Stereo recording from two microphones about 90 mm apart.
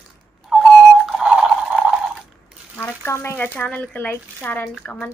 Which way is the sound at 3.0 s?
30° left (ahead or behind).